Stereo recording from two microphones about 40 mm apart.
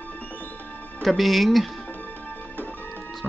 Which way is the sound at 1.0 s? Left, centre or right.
Centre.